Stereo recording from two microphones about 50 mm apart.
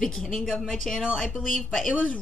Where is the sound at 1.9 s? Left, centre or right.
Left.